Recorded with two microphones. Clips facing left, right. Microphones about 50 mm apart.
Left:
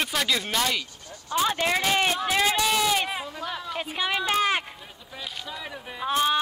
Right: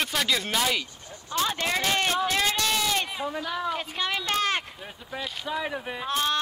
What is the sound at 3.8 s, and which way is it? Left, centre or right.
Speech, centre.